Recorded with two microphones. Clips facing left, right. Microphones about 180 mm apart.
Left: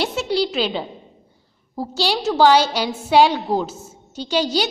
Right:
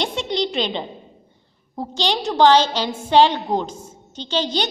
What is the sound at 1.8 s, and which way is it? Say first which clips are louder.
A woman's voice: left 1 dB; 5° left (ahead or behind).